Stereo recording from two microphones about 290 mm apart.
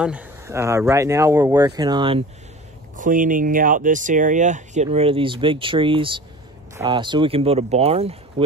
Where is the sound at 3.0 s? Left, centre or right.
Right.